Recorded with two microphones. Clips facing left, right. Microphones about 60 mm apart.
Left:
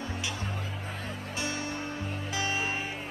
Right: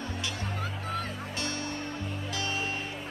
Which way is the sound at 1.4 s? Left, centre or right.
Centre.